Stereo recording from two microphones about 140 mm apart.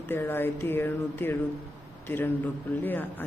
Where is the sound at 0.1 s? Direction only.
15° left (ahead or behind).